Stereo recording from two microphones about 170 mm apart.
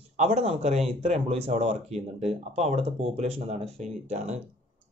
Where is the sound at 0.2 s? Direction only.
40° right (ahead or behind).